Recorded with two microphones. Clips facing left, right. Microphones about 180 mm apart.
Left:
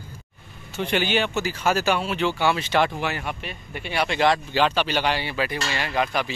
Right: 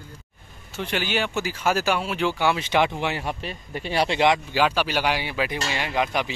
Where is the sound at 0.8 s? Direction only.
Centre (ahead or behind); by 4.2 s 35° right (ahead or behind).